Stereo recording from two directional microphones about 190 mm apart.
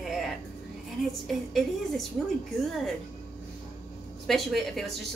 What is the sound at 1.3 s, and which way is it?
Speech, centre (ahead or behind).